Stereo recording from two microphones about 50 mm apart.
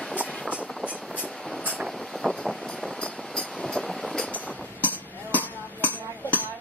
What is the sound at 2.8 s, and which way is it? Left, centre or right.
Train, centre.